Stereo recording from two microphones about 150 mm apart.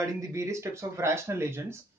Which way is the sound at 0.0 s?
20° right (ahead or behind).